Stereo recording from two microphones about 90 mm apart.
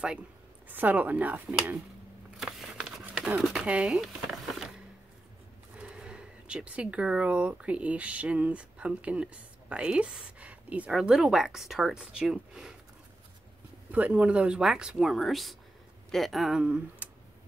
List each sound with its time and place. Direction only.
0.7 s speech: 20° right (ahead or behind)
2.3 s a sound: 5° right (ahead or behind)
3.1 s speech: 10° right (ahead or behind)
4.0 s a sound: centre (ahead or behind)
5.8 s speech: 10° right (ahead or behind)
10.9 s speech: 5° right (ahead or behind)
13.9 s speech: 15° right (ahead or behind)
16.6 s speech: 15° right (ahead or behind)